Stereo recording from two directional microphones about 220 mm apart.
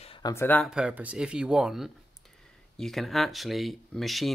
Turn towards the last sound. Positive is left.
turn(degrees=0)  # may be behind; listen again after turning